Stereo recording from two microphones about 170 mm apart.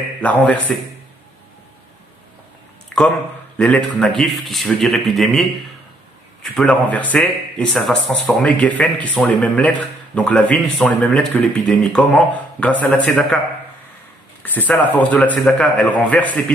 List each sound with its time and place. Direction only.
0.2 s speech: 10° left (ahead or behind)
3.5 s a man's voice: 5° left (ahead or behind)
14.4 s speech: 10° left (ahead or behind)